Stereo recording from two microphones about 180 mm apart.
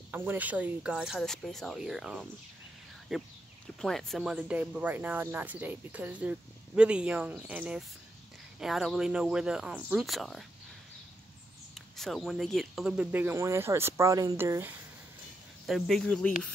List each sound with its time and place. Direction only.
0.1 s speech: 10° right (ahead or behind)
11.7 s speech: centre (ahead or behind)
15.6 s speech: centre (ahead or behind)